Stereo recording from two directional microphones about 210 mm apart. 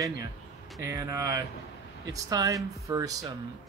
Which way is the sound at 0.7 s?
15° right (ahead or behind).